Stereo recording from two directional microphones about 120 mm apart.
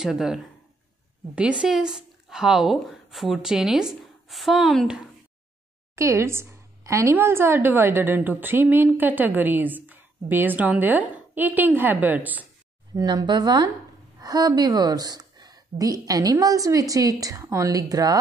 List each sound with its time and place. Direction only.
0.0 s speech: 5° right (ahead or behind)
5.9 s a woman's voice: 25° right (ahead or behind)
12.9 s a woman's voice: 35° right (ahead or behind)